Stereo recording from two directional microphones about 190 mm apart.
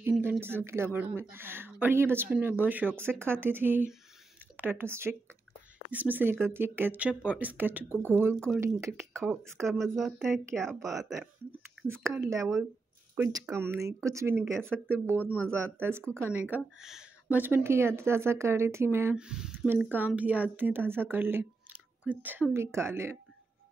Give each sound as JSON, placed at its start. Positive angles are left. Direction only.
{"t": 0.0, "sound": "speech", "side_deg": -10}
{"t": 12.2, "sound": "speech", "side_deg": -15}